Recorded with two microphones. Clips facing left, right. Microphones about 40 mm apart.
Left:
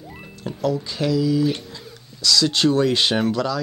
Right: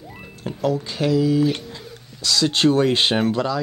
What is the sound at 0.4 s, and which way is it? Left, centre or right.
Speech, right.